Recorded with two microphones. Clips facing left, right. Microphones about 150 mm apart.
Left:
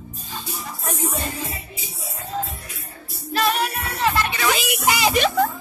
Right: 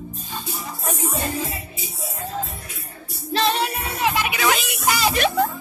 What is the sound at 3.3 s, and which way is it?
Music, 25° right (ahead or behind).